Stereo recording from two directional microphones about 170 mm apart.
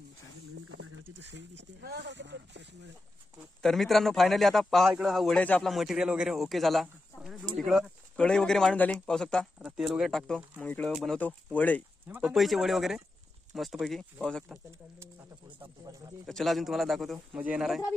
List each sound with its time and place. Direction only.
1.2 s speech: 90° right
3.6 s a man's voice: centre (ahead or behind)
11.1 s a man's voice: 10° left (ahead or behind)
15.6 s speech: 20° right (ahead or behind)
16.3 s a man's voice: centre (ahead or behind)